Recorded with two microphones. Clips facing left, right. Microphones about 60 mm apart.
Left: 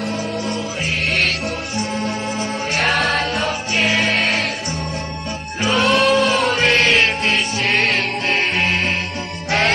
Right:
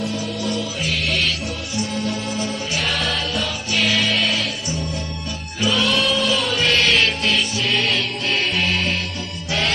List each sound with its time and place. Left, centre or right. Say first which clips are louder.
1.0 s music: left 5 dB; left
5.6 s music: left 2 dB; left
5.9 s music: left 5 dB; left